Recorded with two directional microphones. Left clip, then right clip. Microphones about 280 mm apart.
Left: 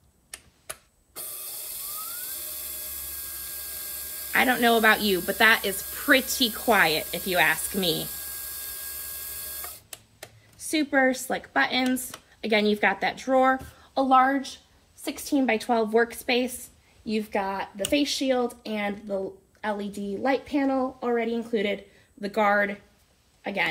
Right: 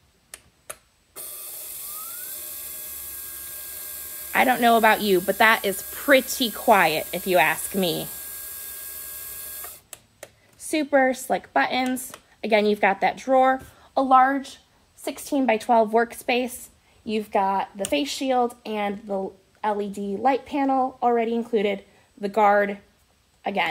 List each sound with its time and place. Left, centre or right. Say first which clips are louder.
2.0 s dental drill: left 1 dB; centre
4.3 s a woman's voice: right 3 dB; right
8.2 s a sound: left 1 dB; centre
9.4 s printer: left 1 dB; centre
10.7 s a woman's voice: right 3 dB; right